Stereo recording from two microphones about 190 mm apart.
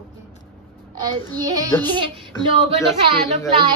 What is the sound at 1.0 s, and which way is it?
Speech, 20° right (ahead or behind).